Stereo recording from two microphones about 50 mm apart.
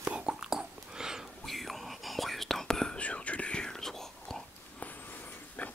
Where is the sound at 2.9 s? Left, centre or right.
Left; by 4.4 s centre.